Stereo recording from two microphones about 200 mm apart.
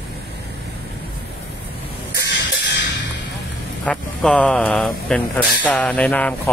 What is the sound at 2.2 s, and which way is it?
Music, 60° left (ahead or behind).